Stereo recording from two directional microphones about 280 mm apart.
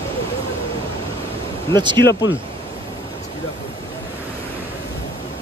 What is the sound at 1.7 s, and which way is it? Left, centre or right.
Speech, centre.